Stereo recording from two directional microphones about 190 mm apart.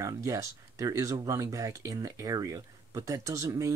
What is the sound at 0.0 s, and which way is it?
Speech, 15° right (ahead or behind).